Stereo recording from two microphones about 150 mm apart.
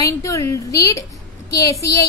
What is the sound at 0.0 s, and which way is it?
A woman's voice, 20° left (ahead or behind).